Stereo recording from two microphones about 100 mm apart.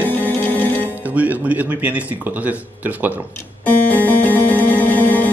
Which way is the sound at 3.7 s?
15° left (ahead or behind).